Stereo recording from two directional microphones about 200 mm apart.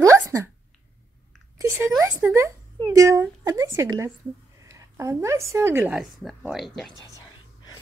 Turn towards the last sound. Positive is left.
turn(degrees=0)  # may be behind; listen again after turning